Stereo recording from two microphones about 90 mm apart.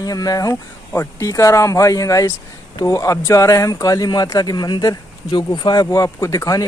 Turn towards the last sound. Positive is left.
turn(degrees=40)  # may be behind; listen again after turning